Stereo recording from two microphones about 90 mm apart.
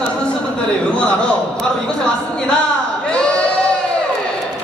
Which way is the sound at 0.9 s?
10° left (ahead or behind).